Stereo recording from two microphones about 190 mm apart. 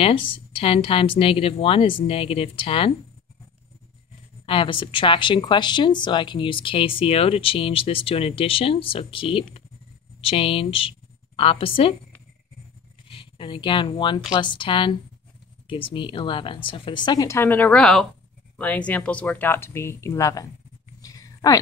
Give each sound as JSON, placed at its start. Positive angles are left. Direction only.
{"t": 0.0, "sound": "a woman's voice", "side_deg": 30}
{"t": 4.5, "sound": "a woman's voice", "side_deg": 25}
{"t": 13.1, "sound": "a woman's voice", "side_deg": 25}
{"t": 21.0, "sound": "a sound", "side_deg": 20}